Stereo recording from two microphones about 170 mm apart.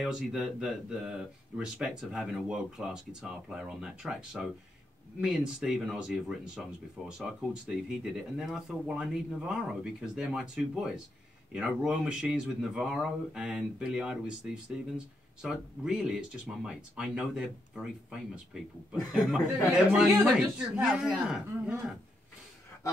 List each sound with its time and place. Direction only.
0.0 s speech: 5° right (ahead or behind)